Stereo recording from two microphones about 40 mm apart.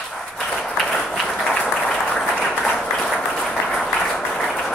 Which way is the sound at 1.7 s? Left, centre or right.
Left.